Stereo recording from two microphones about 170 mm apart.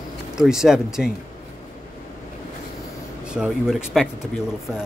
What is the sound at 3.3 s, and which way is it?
Speech, 5° right (ahead or behind).